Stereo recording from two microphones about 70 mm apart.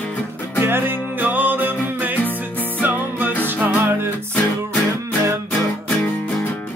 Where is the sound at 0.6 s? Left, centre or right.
Right.